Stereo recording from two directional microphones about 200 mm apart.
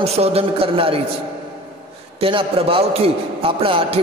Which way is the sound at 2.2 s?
25° right (ahead or behind).